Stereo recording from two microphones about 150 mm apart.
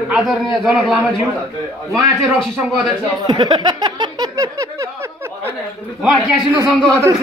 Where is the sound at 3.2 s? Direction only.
25° right (ahead or behind).